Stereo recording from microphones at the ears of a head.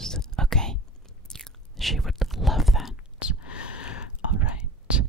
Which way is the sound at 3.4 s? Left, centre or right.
Left.